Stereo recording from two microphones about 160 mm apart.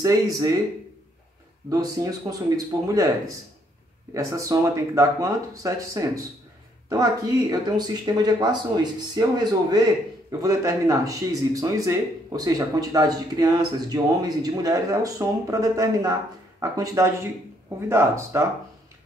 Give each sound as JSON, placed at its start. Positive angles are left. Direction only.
{"t": 0.0, "sound": "speech", "side_deg": -20}
{"t": 1.7, "sound": "speech", "side_deg": -20}
{"t": 7.7, "sound": "speech", "side_deg": -25}